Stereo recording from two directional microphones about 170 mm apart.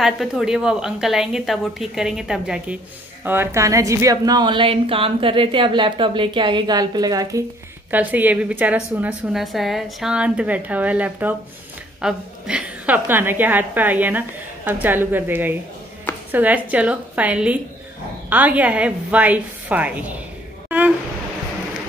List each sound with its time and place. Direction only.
0.0 s a woman's voice: centre (ahead or behind)
3.3 s a woman's voice: 15° right (ahead or behind)
7.9 s a woman's voice: 10° right (ahead or behind)